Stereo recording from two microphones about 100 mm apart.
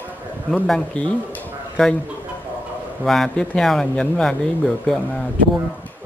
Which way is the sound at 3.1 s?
5° left (ahead or behind).